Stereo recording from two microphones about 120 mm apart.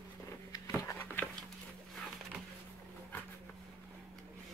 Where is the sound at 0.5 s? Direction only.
30° left (ahead or behind).